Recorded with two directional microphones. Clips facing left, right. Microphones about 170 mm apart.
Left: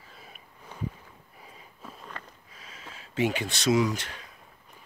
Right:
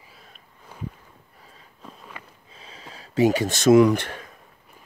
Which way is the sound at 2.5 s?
30° right (ahead or behind).